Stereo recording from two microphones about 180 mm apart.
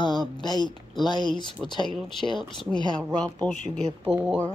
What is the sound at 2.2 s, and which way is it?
Speech, 25° left (ahead or behind).